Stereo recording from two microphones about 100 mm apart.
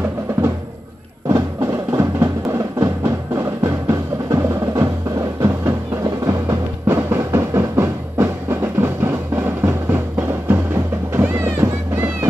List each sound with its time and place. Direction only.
1.3 s music: 30° right (ahead or behind)